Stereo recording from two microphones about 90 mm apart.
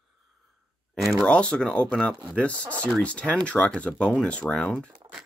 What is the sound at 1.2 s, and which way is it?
Speech, 10° left (ahead or behind).